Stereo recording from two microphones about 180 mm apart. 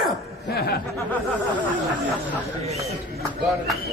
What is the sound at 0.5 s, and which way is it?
Speech, 60° left (ahead or behind).